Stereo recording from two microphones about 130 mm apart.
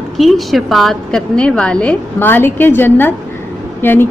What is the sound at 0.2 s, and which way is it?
A woman's voice, centre (ahead or behind).